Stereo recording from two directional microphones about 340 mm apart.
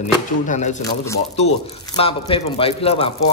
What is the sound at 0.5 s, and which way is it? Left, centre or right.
Speech, left.